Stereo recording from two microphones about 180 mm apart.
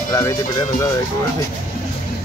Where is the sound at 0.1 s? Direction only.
15° left (ahead or behind).